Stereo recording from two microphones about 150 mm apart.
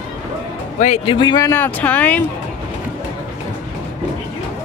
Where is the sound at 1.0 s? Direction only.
30° left (ahead or behind).